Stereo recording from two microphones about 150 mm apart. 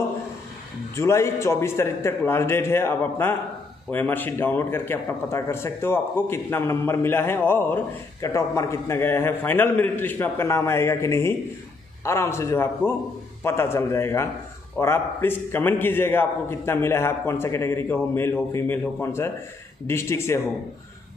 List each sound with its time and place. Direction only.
0.9 s speech: 20° left (ahead or behind)